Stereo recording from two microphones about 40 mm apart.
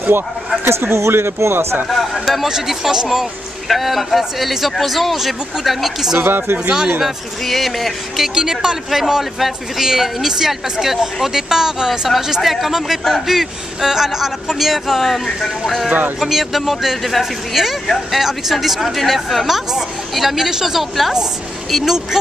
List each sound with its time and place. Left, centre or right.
0.7 s speech: right
1.9 s speech: centre
2.4 s speech: centre
6.1 s speech: right
6.7 s a man's voice: centre
7.4 s speech: centre
8.4 s a man's voice: centre
12.4 s a man's voice: centre
21.6 s speech: centre